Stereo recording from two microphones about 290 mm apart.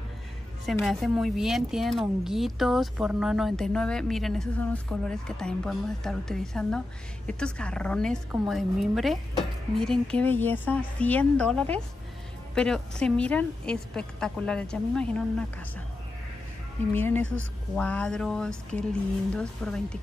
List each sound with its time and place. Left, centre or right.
0.7 s a woman's voice: centre
16.9 s a woman's voice: centre